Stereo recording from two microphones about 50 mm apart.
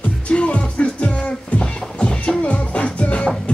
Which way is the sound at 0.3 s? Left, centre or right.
Left.